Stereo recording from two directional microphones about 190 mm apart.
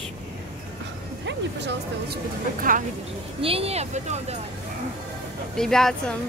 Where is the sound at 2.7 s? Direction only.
45° right (ahead or behind).